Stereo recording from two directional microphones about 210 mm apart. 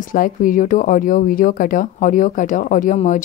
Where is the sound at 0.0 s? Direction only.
40° left (ahead or behind).